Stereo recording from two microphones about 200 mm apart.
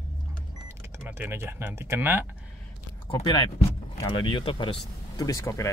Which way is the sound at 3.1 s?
25° left (ahead or behind).